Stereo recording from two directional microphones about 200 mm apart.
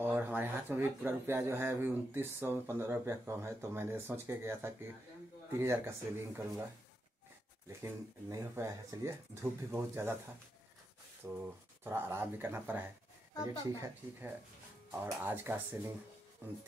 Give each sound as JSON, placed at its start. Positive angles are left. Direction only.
{"t": 0.0, "sound": "speech", "side_deg": -10}
{"t": 7.8, "sound": "speech", "side_deg": -15}
{"t": 11.2, "sound": "speech", "side_deg": -10}